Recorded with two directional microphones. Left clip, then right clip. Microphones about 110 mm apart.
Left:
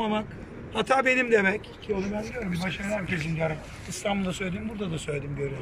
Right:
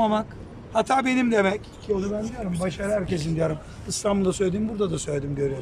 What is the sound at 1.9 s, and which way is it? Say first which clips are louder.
Speech: right 4 dB; 20° right (ahead or behind).